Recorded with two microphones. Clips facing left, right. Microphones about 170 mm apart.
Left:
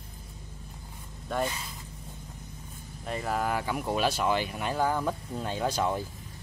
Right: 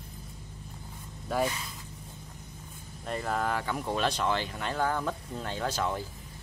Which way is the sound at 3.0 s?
5° left (ahead or behind).